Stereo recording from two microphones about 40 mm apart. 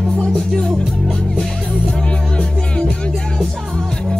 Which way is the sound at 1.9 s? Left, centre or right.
Left.